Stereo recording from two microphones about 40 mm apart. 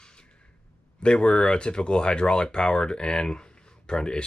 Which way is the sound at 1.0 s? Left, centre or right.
Left.